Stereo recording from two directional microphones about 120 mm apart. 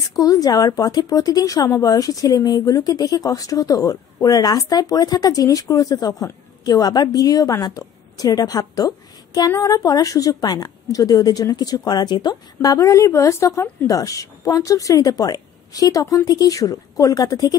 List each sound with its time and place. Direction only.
0.1 s a woman's voice: 30° left (ahead or behind)